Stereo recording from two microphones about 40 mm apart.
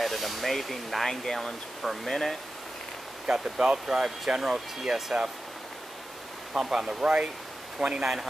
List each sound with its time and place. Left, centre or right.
0.0 s speech: centre
3.3 s speech: centre
6.5 s speech: centre